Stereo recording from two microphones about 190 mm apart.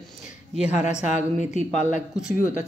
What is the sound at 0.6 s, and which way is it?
Speech, 35° left (ahead or behind).